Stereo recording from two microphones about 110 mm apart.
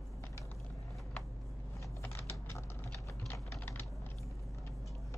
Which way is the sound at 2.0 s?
20° left (ahead or behind).